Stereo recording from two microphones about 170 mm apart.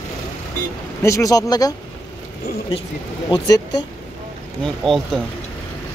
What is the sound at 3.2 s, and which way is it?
Speech, 25° left (ahead or behind).